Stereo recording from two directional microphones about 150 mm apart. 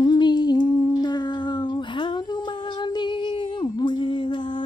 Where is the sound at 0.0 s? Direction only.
30° left (ahead or behind).